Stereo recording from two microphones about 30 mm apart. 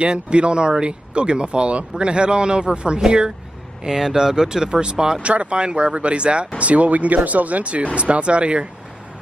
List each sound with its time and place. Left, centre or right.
0.0 s speech: right
4.0 s speech: centre
5.2 s speech: right
6.6 s speech: right